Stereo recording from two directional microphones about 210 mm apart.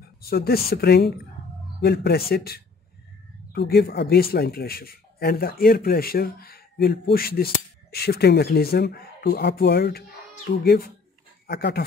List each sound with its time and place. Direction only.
0.2 s speech: 45° left (ahead or behind)